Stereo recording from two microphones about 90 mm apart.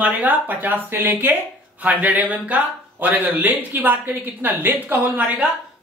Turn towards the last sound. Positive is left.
turn(degrees=-15)  # may be behind; listen again after turning